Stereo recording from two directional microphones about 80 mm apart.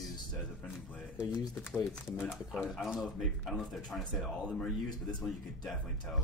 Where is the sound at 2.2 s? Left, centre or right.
Centre.